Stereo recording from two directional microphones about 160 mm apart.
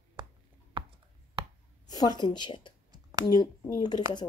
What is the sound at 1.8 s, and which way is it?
Speech, 25° left (ahead or behind).